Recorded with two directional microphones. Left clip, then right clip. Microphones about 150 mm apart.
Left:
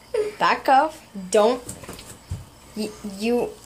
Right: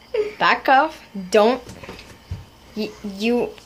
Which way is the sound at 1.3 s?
15° right (ahead or behind).